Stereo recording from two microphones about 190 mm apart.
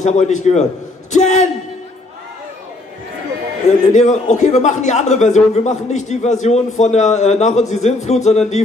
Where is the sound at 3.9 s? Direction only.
40° left (ahead or behind).